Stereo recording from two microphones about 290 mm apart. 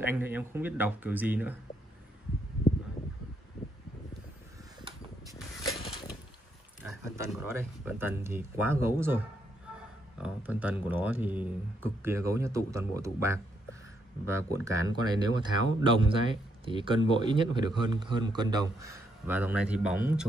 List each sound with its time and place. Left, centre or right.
0.0 s speech: centre
5.3 s a sound: centre
6.8 s speech: centre
14.5 s speech: centre